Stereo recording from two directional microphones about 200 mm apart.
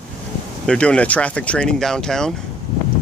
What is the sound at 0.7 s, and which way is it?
Speech, 5° left (ahead or behind).